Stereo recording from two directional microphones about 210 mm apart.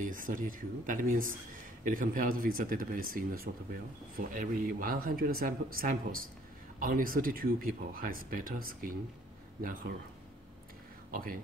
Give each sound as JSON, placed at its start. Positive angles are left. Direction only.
{"t": 0.0, "sound": "speech", "side_deg": -40}
{"t": 11.1, "sound": "speech", "side_deg": -40}